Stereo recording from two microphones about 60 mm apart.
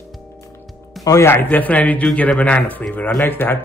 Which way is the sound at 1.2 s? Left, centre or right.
Left.